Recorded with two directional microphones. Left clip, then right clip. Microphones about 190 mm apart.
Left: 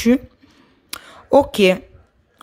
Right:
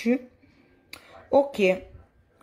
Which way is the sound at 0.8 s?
25° left (ahead or behind).